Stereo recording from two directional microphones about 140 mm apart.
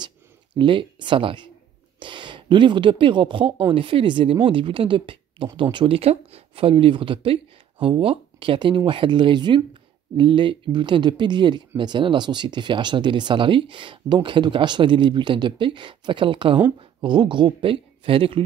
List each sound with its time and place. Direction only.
0.6 s speech: 35° right (ahead or behind)